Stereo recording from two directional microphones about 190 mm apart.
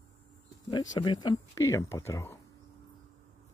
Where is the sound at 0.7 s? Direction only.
20° left (ahead or behind).